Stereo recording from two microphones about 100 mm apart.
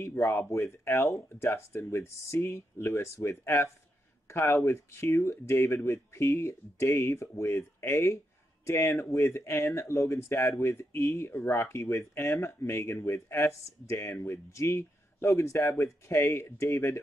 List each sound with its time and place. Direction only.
0.0 s speech: 25° left (ahead or behind)